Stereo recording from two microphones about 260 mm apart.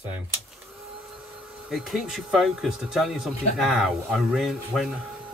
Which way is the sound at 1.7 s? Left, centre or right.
Centre.